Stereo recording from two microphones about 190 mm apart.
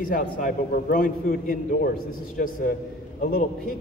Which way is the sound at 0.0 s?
45° left (ahead or behind).